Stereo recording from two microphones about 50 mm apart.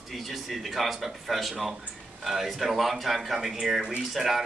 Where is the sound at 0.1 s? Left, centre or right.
Centre.